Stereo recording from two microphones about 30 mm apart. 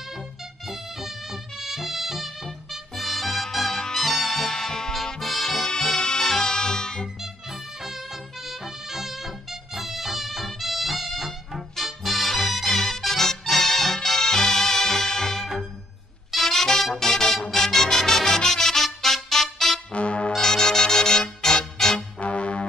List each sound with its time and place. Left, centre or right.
0.7 s music: centre
4.5 s music: centre
5.2 s music: centre
5.9 s music: left
7.8 s music: centre
19.9 s brass instrument: left
20.3 s music: centre
22.2 s brass instrument: left